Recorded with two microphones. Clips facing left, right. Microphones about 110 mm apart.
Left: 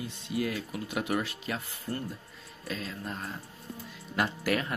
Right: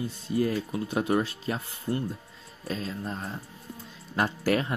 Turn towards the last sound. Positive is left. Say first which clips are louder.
# right 3 dB
turn(degrees=-30)  # may be behind; listen again after turning